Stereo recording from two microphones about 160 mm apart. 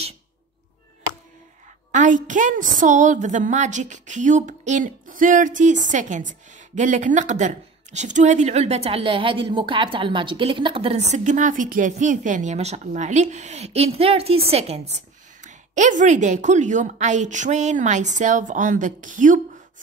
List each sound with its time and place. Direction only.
1.9 s a woman's voice: 50° right (ahead or behind)